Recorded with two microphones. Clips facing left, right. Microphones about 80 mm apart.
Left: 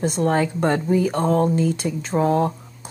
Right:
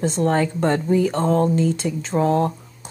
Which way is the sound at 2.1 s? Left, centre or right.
Left.